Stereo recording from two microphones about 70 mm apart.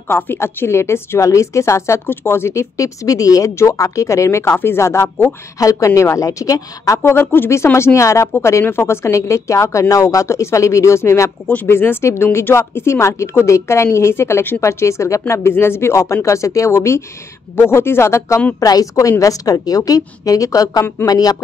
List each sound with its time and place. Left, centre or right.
0.1 s a woman's voice: left
2.8 s a woman's voice: left
5.6 s a woman's voice: left
7.0 s a woman's voice: left
11.6 s a woman's voice: left
18.6 s a woman's voice: left